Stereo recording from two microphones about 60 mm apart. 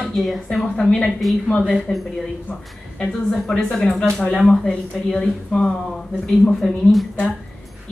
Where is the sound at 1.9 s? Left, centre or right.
Left.